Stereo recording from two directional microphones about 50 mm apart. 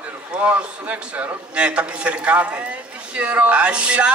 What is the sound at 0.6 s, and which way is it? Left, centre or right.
A man's voice, right.